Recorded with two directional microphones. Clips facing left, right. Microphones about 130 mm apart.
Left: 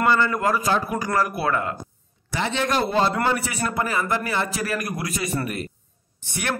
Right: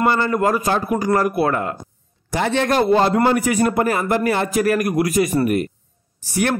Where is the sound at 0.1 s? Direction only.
35° right (ahead or behind).